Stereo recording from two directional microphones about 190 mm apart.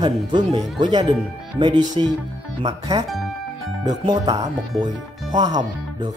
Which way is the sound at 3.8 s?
20° right (ahead or behind).